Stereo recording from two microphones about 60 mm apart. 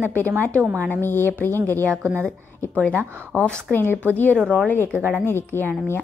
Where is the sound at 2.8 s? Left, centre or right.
Centre.